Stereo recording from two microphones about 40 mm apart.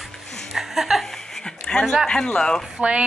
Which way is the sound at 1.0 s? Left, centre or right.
Centre.